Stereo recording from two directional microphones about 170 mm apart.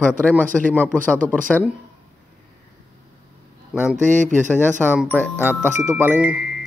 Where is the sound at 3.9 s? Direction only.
45° right (ahead or behind).